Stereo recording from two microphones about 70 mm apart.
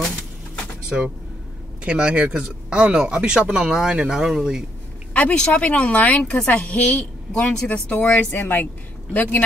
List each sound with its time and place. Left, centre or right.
0.8 s speech: centre
5.1 s a woman's voice: centre